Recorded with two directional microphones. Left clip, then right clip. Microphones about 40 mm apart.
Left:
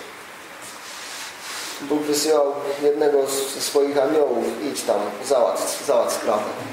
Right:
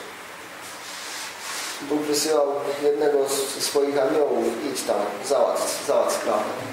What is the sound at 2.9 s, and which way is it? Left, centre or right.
Speech, centre.